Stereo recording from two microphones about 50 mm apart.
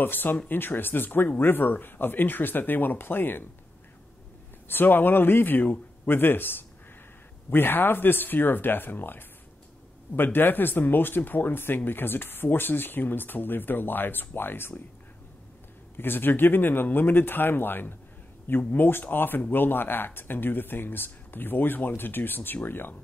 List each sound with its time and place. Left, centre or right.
0.0 s speech: left
4.6 s speech: left
16.0 s speech: left
18.9 s speech: left